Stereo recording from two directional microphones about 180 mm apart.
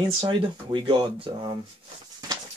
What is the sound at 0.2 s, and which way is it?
Speech, 25° right (ahead or behind).